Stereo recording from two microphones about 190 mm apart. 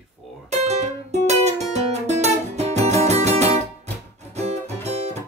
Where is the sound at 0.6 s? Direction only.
35° right (ahead or behind).